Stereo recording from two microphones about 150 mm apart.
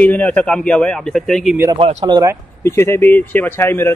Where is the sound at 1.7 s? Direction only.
30° right (ahead or behind).